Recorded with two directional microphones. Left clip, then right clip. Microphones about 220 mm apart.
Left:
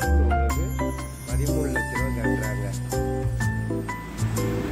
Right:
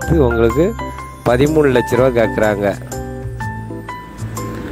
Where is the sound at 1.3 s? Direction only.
45° right (ahead or behind).